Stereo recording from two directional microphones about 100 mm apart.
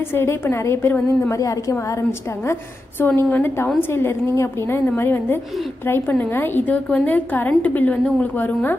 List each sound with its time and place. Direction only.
0.1 s a woman's voice: 25° left (ahead or behind)
1.3 s a woman's voice: 35° left (ahead or behind)
3.0 s a woman's voice: 20° left (ahead or behind)